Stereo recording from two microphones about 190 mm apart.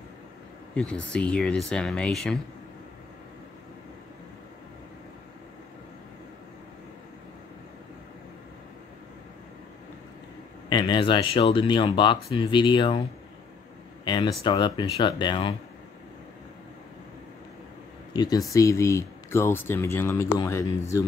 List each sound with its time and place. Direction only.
0.7 s speech: 5° left (ahead or behind)
10.7 s speech: 25° left (ahead or behind)
14.0 s speech: 25° left (ahead or behind)
18.1 s speech: 20° left (ahead or behind)